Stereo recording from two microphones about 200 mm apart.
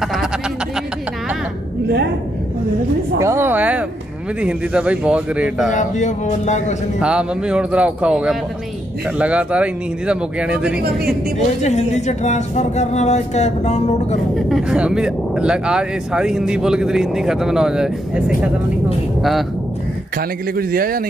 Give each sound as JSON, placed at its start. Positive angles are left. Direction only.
{"t": 0.0, "sound": "a sound", "side_deg": 0}
{"t": 3.2, "sound": "a sound", "side_deg": -15}
{"t": 4.4, "sound": "speech", "side_deg": -5}
{"t": 5.7, "sound": "speech", "side_deg": 35}
{"t": 7.0, "sound": "speech", "side_deg": -5}
{"t": 11.3, "sound": "speech", "side_deg": 35}
{"t": 14.5, "sound": "speech", "side_deg": -5}
{"t": 20.2, "sound": "speech", "side_deg": -45}